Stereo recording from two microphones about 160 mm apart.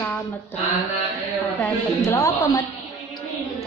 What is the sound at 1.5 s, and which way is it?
A woman's voice, 15° left (ahead or behind).